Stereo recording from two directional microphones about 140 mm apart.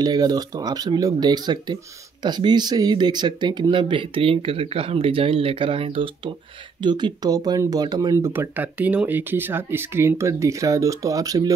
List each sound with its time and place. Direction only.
0.0 s speech: 30° right (ahead or behind)